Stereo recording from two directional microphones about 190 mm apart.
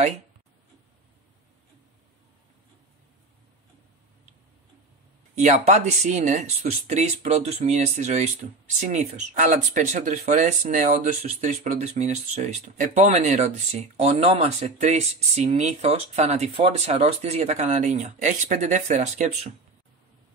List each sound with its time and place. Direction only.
5.7 s speech: 35° right (ahead or behind)